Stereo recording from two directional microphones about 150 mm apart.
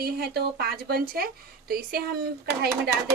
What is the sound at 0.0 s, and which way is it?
A woman's voice, 90° right.